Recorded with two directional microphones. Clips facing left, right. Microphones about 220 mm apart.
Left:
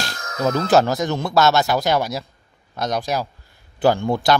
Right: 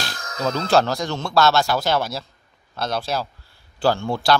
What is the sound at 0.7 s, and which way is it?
A man's voice, 20° left (ahead or behind).